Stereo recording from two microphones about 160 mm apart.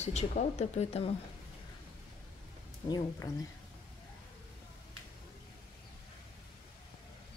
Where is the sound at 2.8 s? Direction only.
25° left (ahead or behind).